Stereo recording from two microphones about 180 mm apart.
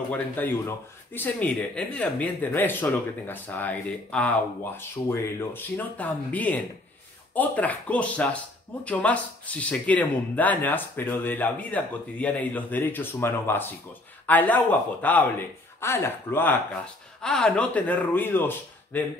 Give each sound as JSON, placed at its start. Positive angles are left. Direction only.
{"t": 0.1, "sound": "speech", "side_deg": 10}